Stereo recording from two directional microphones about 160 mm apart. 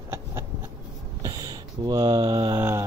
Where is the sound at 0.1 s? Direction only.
20° right (ahead or behind).